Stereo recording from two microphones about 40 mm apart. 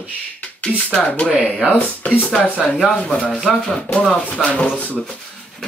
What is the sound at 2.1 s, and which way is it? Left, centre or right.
Speech, left.